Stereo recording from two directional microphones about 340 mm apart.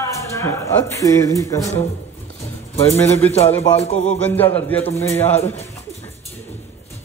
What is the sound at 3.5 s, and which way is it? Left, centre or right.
Music, centre.